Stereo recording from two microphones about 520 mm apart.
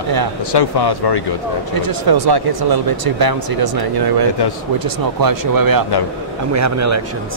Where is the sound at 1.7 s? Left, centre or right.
Right.